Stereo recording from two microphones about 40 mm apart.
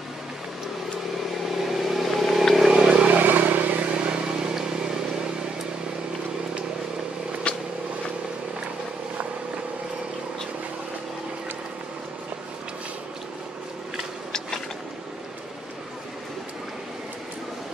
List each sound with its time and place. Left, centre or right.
1.6 s vehicle: centre
2.7 s a sound: centre
3.0 s vehicle: right
3.9 s vehicle: right
7.5 s vehicle: left